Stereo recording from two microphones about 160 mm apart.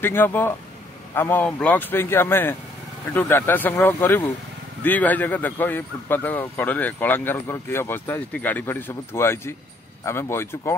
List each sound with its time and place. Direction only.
0.0 s speech: 10° left (ahead or behind)